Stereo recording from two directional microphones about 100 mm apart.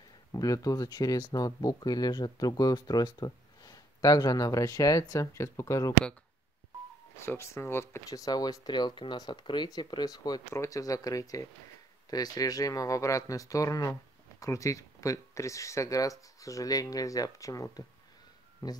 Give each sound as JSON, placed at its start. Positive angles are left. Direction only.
{"t": 0.3, "sound": "speech", "side_deg": 35}
{"t": 7.2, "sound": "speech", "side_deg": 25}